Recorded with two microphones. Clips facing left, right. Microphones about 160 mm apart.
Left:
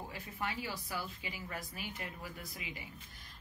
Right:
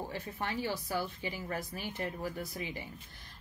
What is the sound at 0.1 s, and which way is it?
Speech, 30° right (ahead or behind).